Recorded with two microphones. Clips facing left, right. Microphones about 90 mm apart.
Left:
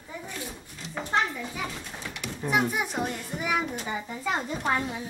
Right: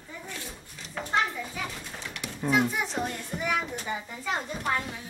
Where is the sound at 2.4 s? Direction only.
15° left (ahead or behind).